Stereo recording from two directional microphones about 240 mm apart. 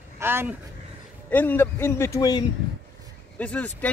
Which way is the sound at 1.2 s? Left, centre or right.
Centre.